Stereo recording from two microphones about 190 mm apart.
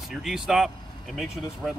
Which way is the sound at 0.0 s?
Centre (ahead or behind).